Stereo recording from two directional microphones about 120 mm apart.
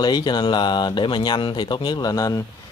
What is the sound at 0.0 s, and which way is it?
Speech, 35° left (ahead or behind).